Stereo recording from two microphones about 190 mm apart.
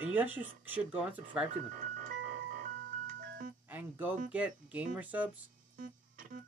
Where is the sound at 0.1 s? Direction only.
10° right (ahead or behind).